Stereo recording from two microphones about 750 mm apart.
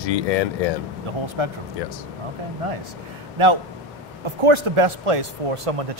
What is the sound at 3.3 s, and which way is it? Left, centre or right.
A man's voice, right.